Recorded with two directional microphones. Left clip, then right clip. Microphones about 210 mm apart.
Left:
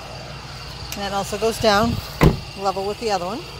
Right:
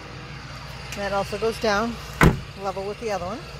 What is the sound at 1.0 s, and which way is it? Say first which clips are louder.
Speech: left 1 dB; 5° left (ahead or behind).